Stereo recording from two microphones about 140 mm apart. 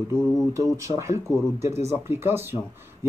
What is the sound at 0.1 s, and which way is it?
Speech, 20° right (ahead or behind).